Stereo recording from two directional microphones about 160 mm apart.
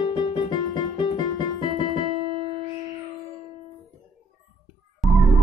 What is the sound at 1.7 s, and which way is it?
Music, 35° right (ahead or behind).